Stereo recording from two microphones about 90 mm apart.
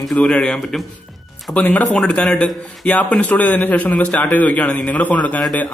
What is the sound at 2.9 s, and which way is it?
A man's voice, 15° left (ahead or behind).